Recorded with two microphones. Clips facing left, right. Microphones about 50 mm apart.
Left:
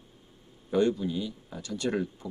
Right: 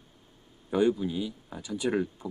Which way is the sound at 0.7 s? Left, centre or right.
Centre.